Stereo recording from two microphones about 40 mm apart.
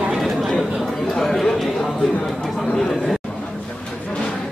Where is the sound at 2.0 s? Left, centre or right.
Left.